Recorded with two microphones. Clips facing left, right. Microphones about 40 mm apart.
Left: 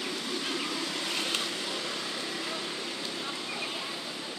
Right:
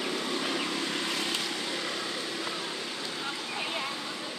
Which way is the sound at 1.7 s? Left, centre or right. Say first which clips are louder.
Right 1 dB; centre.